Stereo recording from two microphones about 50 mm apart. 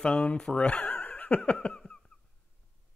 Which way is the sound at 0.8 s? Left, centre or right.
Left.